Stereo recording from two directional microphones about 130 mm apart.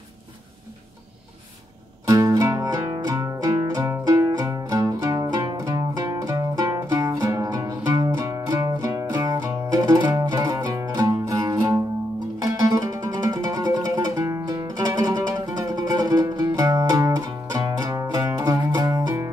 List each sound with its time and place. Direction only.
2.0 s music: 25° right (ahead or behind)